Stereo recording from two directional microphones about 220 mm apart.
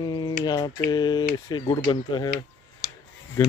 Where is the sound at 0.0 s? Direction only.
20° left (ahead or behind).